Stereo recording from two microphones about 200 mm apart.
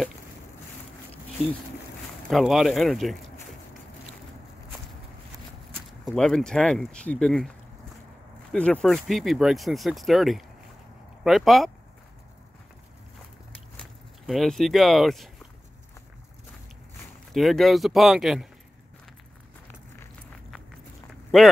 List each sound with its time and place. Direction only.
2.2 s speech: centre (ahead or behind)
6.1 s speech: 5° left (ahead or behind)
13.7 s speech: centre (ahead or behind)
17.3 s speech: centre (ahead or behind)